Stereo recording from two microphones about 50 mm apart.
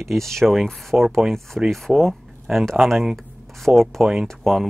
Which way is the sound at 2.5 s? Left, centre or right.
Centre.